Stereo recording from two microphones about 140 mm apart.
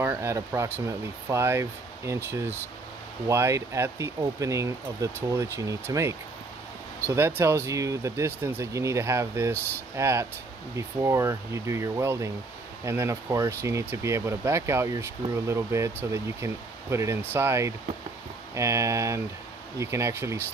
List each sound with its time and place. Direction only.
0.0 s speech: 15° right (ahead or behind)